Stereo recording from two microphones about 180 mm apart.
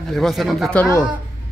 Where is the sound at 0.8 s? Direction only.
15° left (ahead or behind).